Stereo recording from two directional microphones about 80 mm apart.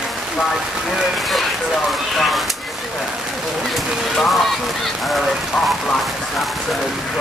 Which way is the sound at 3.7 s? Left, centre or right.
Centre.